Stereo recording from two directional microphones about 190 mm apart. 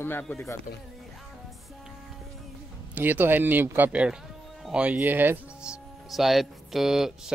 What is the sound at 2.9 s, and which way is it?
Speech, 10° right (ahead or behind).